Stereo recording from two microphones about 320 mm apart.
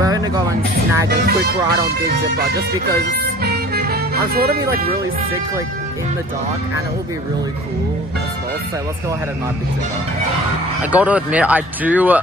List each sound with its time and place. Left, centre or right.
0.0 s a sound: centre
1.0 s speech: right
3.4 s music: right
10.8 s speech: centre